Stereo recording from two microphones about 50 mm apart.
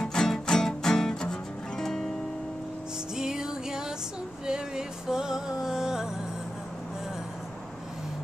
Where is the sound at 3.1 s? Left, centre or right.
Centre.